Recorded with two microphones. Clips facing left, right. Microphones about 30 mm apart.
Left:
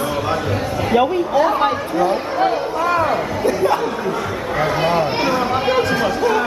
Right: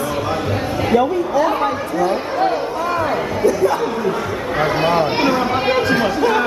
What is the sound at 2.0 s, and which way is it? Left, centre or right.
Speech, centre.